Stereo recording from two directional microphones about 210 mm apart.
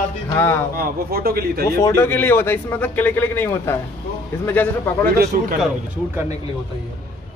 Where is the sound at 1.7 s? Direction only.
15° left (ahead or behind).